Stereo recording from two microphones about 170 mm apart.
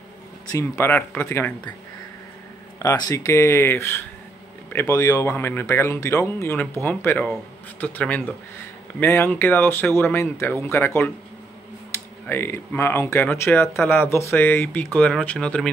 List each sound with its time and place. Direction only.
0.5 s speech: 15° left (ahead or behind)
2.8 s speech: 20° left (ahead or behind)
12.3 s speech: 15° left (ahead or behind)